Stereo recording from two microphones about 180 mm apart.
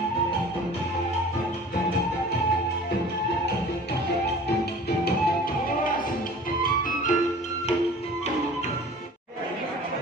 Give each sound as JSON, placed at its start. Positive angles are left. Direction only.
{"t": 4.8, "sound": "music", "side_deg": 60}
{"t": 6.6, "sound": "music", "side_deg": 45}